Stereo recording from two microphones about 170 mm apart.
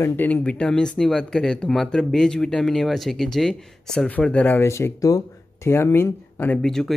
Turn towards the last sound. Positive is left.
turn(degrees=5)  # may be behind; listen again after turning